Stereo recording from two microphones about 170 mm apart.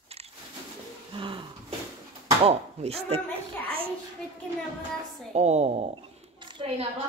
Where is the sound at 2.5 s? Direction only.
35° right (ahead or behind).